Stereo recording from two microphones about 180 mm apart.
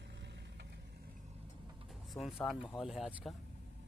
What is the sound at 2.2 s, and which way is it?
Speech, 15° left (ahead or behind).